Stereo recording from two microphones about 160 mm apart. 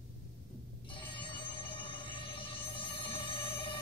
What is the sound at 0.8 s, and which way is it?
Telephone bell ringing, 30° left (ahead or behind).